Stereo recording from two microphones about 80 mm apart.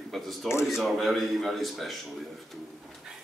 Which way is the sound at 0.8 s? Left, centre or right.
Centre.